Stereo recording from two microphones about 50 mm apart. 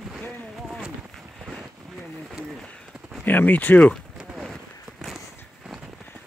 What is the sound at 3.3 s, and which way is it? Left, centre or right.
Speech, left.